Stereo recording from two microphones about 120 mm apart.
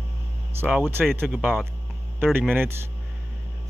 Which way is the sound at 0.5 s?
10° right (ahead or behind).